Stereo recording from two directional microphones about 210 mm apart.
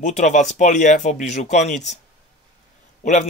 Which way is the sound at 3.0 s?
35° left (ahead or behind).